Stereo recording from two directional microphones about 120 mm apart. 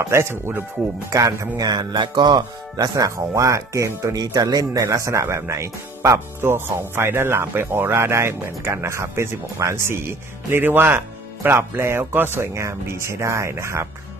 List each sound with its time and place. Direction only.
0.1 s speech: 20° right (ahead or behind)